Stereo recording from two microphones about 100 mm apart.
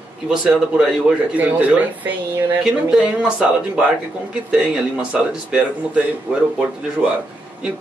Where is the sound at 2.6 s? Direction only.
10° right (ahead or behind).